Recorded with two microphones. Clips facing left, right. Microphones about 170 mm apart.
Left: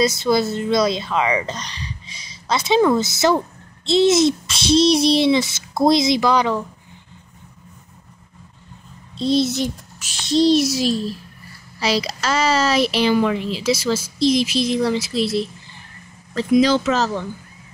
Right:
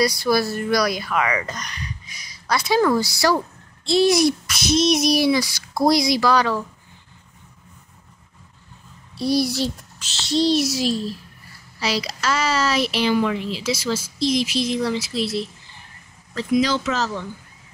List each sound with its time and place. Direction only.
0.0 s speech: 20° left (ahead or behind)
9.1 s speech: 20° left (ahead or behind)
16.3 s speech: 25° left (ahead or behind)